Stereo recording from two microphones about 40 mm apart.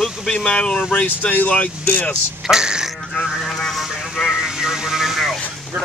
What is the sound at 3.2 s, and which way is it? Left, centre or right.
Vehicle, centre.